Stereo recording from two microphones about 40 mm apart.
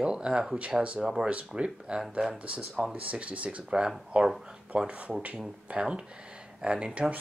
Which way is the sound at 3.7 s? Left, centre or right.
Right.